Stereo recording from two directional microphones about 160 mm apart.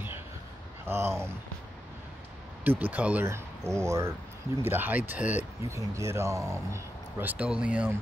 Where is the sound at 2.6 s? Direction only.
10° right (ahead or behind).